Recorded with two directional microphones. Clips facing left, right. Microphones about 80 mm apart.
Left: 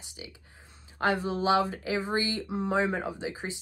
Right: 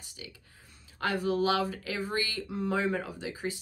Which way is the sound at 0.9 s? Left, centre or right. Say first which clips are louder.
Left 1 dB; left.